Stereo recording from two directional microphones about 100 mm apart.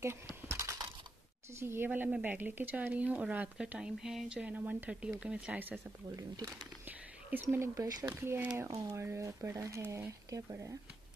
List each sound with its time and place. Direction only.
0.5 s typing: 30° right (ahead or behind)
1.6 s a woman's voice: 25° right (ahead or behind)
6.1 s speech: 35° right (ahead or behind)
6.9 s a sound: 15° right (ahead or behind)
7.4 s speech: 30° right (ahead or behind)
8.1 s a woman's voice: 15° right (ahead or behind)
8.7 s speech: 30° right (ahead or behind)